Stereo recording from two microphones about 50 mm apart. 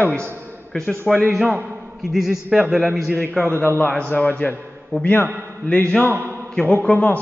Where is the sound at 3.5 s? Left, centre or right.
Left.